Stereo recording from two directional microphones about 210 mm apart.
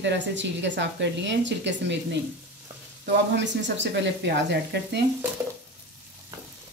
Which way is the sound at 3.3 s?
55° right (ahead or behind).